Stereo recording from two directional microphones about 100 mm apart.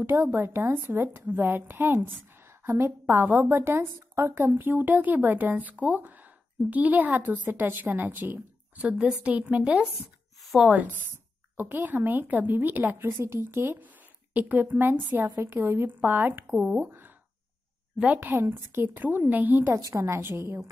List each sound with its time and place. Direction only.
0.0 s a woman's voice: 25° right (ahead or behind)
10.4 s a sound: centre (ahead or behind)
10.7 s a woman's voice: 15° right (ahead or behind)
16.5 s a woman's voice: 10° right (ahead or behind)
17.9 s a woman's voice: 15° right (ahead or behind)
19.8 s a woman's voice: 30° right (ahead or behind)